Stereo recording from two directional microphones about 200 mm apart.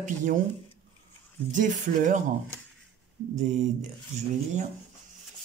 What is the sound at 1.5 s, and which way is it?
Speech, 40° right (ahead or behind).